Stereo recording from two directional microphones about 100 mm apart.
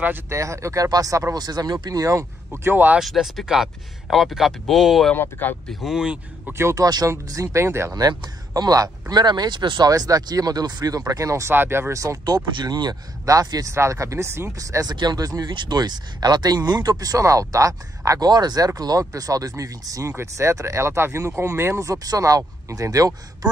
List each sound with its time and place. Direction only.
0.0 s speech: 20° right (ahead or behind)
0.4 s speech: 30° right (ahead or behind)
3.0 s speech: centre (ahead or behind)
5.1 s speech: 20° left (ahead or behind)
5.7 s speech: 5° right (ahead or behind)
6.5 s speech: 30° right (ahead or behind)
7.9 s speech: 45° right (ahead or behind)
9.8 s speech: 35° right (ahead or behind)
11.5 s speech: 20° right (ahead or behind)
12.5 s speech: 45° right (ahead or behind)